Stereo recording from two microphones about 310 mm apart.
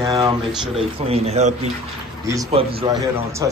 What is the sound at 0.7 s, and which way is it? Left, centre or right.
A man's voice, centre.